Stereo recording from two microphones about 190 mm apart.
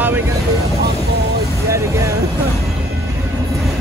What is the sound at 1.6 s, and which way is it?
Speech, 15° right (ahead or behind).